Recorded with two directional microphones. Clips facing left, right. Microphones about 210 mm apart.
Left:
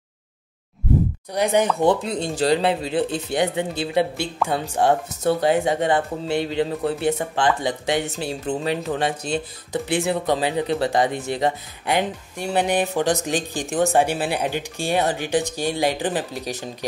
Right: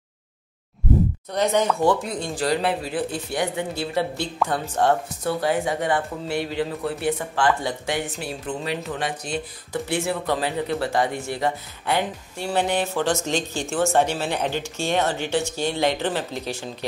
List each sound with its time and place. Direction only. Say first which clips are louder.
1.3 s speech: left 2 dB; 15° left (ahead or behind)
5.2 s speech: left 7 dB; 25° left (ahead or behind)